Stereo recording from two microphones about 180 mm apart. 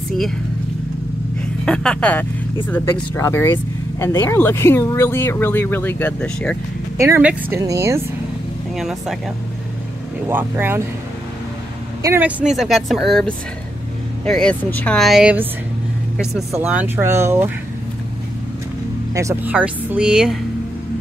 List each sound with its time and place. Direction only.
1.7 s speech: 5° left (ahead or behind)
7.0 s speech: 10° right (ahead or behind)
8.7 s speech: centre (ahead or behind)
10.2 s speech: 10° right (ahead or behind)
12.0 s speech: 10° right (ahead or behind)
16.5 s speech: 10° right (ahead or behind)
19.1 s speech: 15° right (ahead or behind)